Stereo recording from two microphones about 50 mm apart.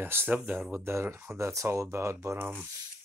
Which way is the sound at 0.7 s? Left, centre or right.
Right.